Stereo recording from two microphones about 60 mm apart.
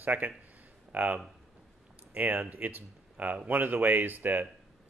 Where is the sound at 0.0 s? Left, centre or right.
Right.